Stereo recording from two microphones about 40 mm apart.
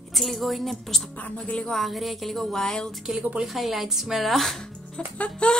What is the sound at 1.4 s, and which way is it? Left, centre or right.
Speech, left.